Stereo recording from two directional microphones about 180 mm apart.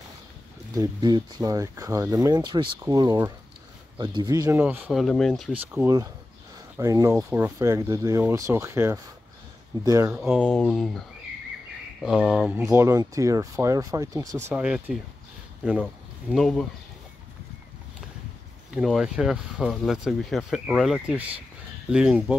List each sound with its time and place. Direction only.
0.7 s speech: 20° right (ahead or behind)
4.6 s speech: 10° right (ahead or behind)
5.0 s speech: centre (ahead or behind)
5.8 s speech: 20° right (ahead or behind)
10.1 s speech: 5° right (ahead or behind)
10.4 s speech: 5° left (ahead or behind); by 14.4 s 20° right (ahead or behind)
14.5 s speech: 5° right (ahead or behind)
18.8 s speech: 5° right (ahead or behind)